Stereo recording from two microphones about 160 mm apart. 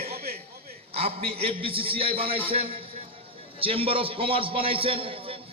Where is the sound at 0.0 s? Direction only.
70° right (ahead or behind).